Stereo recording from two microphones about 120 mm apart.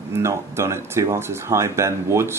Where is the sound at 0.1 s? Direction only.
20° right (ahead or behind).